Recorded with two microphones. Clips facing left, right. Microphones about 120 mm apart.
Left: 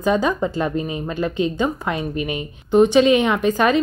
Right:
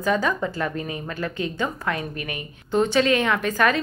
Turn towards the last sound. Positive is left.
turn(degrees=20)  # may be behind; listen again after turning